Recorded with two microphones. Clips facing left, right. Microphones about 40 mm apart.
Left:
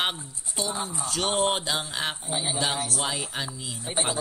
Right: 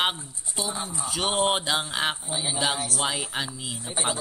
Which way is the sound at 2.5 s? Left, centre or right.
Centre.